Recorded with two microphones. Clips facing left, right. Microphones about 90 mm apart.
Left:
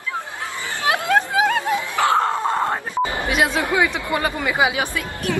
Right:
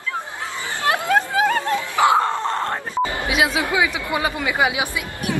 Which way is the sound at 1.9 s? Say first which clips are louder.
Right 3 dB; 15° right (ahead or behind).